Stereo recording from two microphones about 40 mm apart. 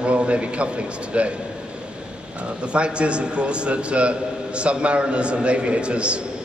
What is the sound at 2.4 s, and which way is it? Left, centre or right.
A man's voice, right.